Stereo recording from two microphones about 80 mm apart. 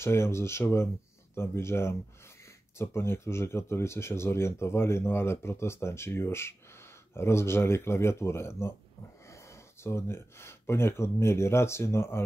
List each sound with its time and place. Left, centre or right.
0.0 s speech: left